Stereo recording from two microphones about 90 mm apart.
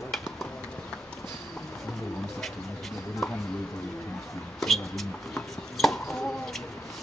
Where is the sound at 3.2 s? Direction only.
5° left (ahead or behind).